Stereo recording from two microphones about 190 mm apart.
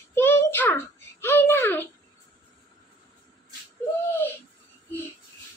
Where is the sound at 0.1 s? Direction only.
10° left (ahead or behind).